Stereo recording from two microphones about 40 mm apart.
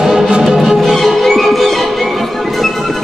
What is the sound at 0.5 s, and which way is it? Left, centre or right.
Music, centre.